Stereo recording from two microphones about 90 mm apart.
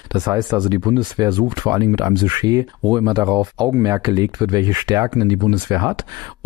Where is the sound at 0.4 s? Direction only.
55° right (ahead or behind).